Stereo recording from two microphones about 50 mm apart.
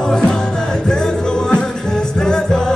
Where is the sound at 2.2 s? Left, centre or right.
Centre.